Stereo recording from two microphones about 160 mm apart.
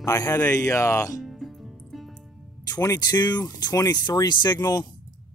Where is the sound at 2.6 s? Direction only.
20° left (ahead or behind).